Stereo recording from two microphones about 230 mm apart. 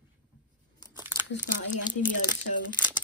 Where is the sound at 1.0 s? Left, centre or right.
Centre.